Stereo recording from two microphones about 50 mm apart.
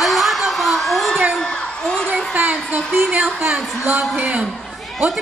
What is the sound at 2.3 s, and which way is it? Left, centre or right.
Speech, right.